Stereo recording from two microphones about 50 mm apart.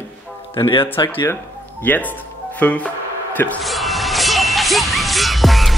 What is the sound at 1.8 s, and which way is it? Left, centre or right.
Speech, left.